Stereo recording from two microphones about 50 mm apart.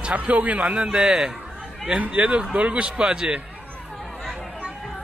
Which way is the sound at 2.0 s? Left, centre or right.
Right.